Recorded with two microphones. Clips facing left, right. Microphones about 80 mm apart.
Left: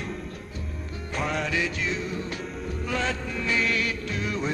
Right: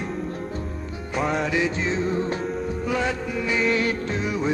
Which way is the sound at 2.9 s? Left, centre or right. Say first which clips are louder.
Right 3 dB; centre.